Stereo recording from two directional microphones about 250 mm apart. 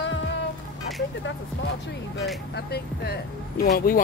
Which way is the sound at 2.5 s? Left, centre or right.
Left.